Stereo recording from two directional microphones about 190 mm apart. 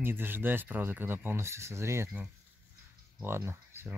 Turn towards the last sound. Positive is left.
turn(degrees=-15)  # may be behind; listen again after turning